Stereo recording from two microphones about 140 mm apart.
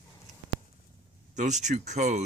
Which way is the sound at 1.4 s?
55° right (ahead or behind).